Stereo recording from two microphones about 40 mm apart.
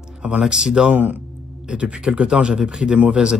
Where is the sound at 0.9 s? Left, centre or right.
Right.